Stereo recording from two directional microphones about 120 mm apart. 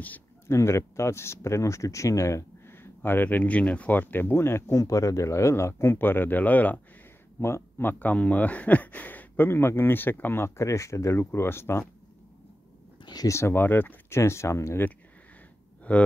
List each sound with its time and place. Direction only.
0.0 s a sound: 15° left (ahead or behind)
0.6 s speech: 25° left (ahead or behind)
13.0 s speech: 35° left (ahead or behind)
13.4 s speech: 20° left (ahead or behind)